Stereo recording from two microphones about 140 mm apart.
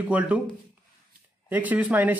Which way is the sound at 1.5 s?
10° right (ahead or behind).